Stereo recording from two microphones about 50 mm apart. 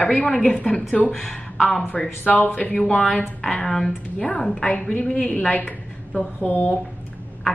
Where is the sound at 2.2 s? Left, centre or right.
Left.